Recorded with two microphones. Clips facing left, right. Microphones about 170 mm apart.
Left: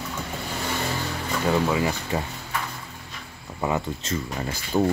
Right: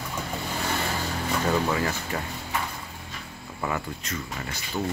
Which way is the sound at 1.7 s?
15° left (ahead or behind).